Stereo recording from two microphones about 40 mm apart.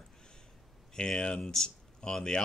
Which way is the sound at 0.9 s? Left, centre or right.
Centre.